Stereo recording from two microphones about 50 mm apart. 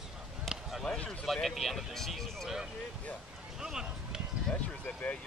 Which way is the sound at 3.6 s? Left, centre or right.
Centre.